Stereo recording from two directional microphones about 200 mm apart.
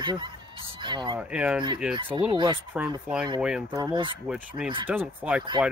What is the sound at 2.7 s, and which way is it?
Speech, 5° right (ahead or behind).